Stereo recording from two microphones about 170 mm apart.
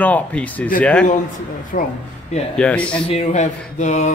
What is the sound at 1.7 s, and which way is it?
Speech, 50° left (ahead or behind).